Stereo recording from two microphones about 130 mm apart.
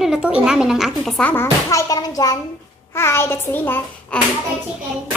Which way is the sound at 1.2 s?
15° left (ahead or behind).